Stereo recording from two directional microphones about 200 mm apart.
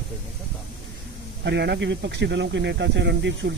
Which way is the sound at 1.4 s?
55° right (ahead or behind).